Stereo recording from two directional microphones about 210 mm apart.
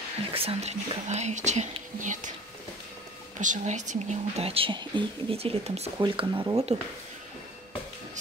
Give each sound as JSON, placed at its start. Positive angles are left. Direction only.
{"t": 0.3, "sound": "speech", "side_deg": -25}
{"t": 3.3, "sound": "speech", "side_deg": -35}